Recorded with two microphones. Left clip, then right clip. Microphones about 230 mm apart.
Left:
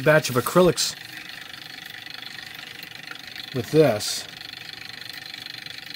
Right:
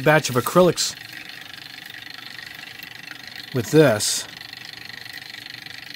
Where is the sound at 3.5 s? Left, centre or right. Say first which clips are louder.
Right 3 dB; right.